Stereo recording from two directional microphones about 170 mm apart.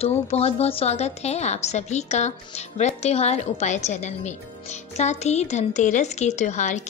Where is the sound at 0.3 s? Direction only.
35° left (ahead or behind).